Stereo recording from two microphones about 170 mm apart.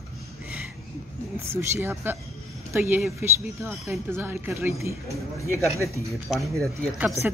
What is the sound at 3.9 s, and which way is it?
A woman's voice, 15° right (ahead or behind).